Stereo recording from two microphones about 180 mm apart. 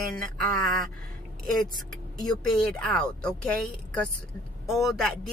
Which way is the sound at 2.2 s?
20° left (ahead or behind).